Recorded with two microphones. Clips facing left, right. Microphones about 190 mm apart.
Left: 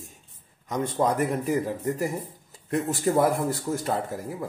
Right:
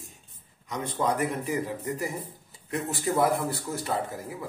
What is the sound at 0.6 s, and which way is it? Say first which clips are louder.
Speech: left 4 dB; 45° left (ahead or behind).